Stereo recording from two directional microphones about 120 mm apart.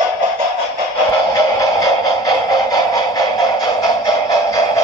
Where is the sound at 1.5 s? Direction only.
30° left (ahead or behind).